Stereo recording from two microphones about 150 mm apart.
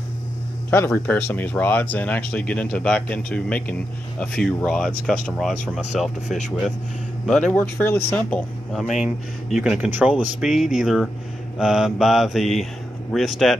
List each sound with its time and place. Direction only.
0.7 s speech: 15° left (ahead or behind); by 6.1 s centre (ahead or behind)
7.2 s speech: 5° left (ahead or behind)
9.0 s speech: 5° right (ahead or behind)